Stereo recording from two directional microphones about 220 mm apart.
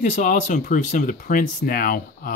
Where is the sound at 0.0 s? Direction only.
35° left (ahead or behind).